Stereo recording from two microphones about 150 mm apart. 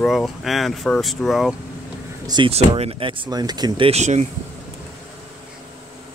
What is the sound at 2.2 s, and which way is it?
Speech, 30° right (ahead or behind).